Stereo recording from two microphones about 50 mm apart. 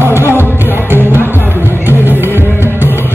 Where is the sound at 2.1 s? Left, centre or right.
Left.